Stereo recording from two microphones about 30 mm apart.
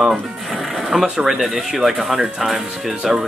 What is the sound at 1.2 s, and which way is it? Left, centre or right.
Speech, centre.